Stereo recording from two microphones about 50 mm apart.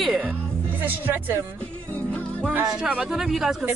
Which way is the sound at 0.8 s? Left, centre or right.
Right.